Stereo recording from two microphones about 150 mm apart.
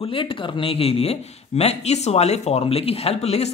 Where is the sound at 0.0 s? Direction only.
35° left (ahead or behind).